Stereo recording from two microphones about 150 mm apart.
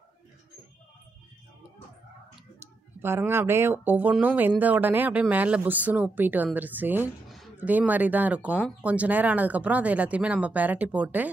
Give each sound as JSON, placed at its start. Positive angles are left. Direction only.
{"t": 3.0, "sound": "speech", "side_deg": -15}